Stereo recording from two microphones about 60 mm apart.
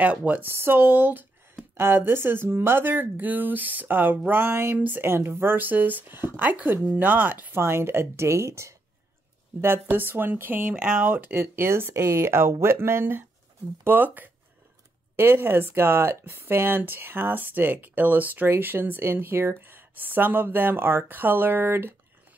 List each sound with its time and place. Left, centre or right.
0.0 s speech: right
0.5 s speech: right
7.5 s speech: right
9.6 s speech: right
10.7 s speech: right
11.1 s speech: right
11.9 s speech: right
15.1 s speech: right